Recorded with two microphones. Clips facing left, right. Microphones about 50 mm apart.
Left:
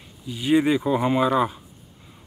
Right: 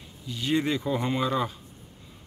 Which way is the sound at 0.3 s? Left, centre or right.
Centre.